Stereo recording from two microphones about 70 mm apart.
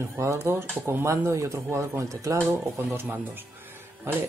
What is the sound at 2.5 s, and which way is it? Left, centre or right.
Speech, right.